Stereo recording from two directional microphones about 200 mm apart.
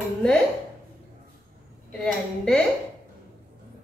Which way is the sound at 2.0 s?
5° left (ahead or behind).